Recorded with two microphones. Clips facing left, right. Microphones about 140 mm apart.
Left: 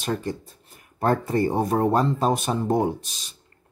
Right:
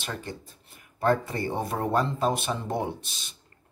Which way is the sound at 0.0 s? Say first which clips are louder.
Left 8 dB; 40° left (ahead or behind).